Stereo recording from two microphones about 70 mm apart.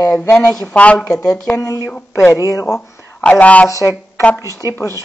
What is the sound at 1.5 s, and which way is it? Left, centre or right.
A man's voice, left.